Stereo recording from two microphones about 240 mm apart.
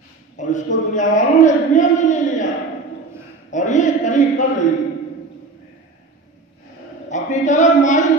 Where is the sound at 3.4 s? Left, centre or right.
Left.